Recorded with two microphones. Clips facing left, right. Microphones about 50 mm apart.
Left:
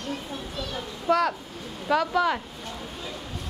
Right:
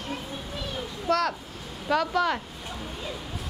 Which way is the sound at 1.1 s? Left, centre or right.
Centre.